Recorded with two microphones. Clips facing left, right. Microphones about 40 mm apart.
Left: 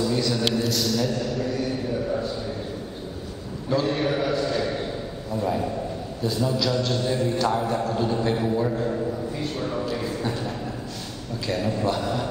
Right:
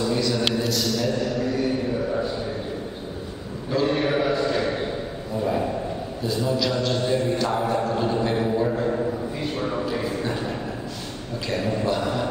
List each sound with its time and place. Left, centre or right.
0.1 s a man's voice: centre
3.8 s a man's voice: centre
5.4 s mantra: centre
11.4 s mantra: centre